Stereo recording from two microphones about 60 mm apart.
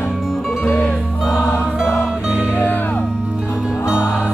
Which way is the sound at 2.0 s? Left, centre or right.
Centre.